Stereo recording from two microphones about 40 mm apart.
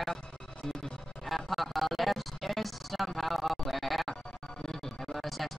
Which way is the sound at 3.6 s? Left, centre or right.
Centre.